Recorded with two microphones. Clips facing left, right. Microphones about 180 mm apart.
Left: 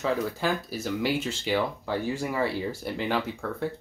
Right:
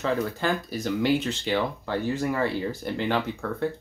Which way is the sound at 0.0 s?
5° left (ahead or behind).